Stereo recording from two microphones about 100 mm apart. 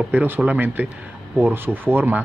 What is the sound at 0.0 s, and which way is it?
A man's voice, 15° right (ahead or behind).